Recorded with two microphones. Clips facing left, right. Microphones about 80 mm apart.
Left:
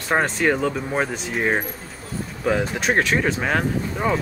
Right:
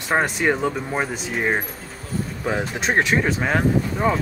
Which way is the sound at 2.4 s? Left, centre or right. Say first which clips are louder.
Left 3 dB; right.